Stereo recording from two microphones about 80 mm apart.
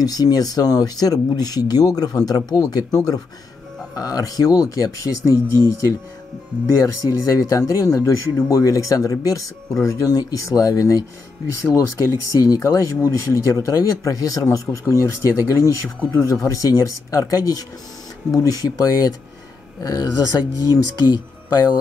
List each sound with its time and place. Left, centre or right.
0.0 s speech: left
6.8 s speech: left